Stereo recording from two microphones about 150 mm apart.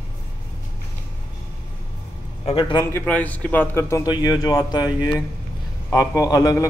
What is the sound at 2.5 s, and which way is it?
Speech, 35° left (ahead or behind).